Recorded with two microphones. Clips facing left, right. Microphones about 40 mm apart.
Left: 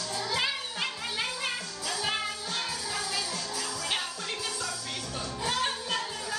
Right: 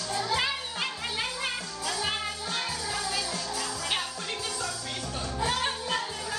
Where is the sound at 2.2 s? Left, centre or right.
Centre.